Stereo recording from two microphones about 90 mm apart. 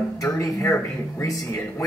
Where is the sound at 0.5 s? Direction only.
30° left (ahead or behind).